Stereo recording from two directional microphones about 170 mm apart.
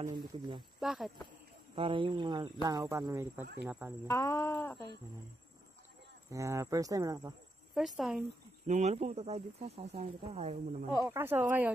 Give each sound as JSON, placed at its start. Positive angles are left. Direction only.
{"t": 0.1, "sound": "speech", "side_deg": -30}
{"t": 0.7, "sound": "speech", "side_deg": 0}
{"t": 1.8, "sound": "speech", "side_deg": -30}
{"t": 4.1, "sound": "speech", "side_deg": 20}
{"t": 6.3, "sound": "speech", "side_deg": -20}
{"t": 7.7, "sound": "speech", "side_deg": 0}
{"t": 8.6, "sound": "speech", "side_deg": -40}
{"t": 11.0, "sound": "speech", "side_deg": -15}